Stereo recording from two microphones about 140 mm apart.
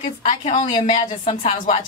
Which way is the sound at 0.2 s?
50° left (ahead or behind).